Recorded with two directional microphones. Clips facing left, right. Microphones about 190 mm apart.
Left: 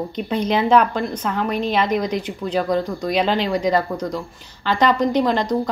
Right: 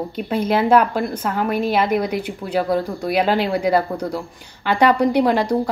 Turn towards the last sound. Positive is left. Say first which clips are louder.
# right 2 dB
turn(degrees=-10)  # may be behind; listen again after turning